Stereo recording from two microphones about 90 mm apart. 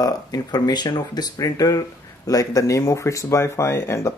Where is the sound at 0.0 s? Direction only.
50° left (ahead or behind).